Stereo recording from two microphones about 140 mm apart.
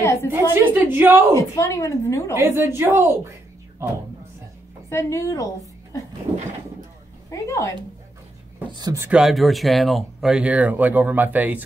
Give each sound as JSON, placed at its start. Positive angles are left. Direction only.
{"t": 0.0, "sound": "a woman's voice", "side_deg": 20}
{"t": 0.3, "sound": "speech", "side_deg": -15}
{"t": 1.3, "sound": "a woman's voice", "side_deg": 20}
{"t": 2.3, "sound": "speech", "side_deg": -15}
{"t": 4.8, "sound": "a woman's voice", "side_deg": 20}
{"t": 7.2, "sound": "speech", "side_deg": 20}
{"t": 8.7, "sound": "speech", "side_deg": -25}
{"t": 9.1, "sound": "speech", "side_deg": 0}